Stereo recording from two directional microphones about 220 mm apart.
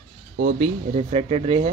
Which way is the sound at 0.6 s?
30° right (ahead or behind).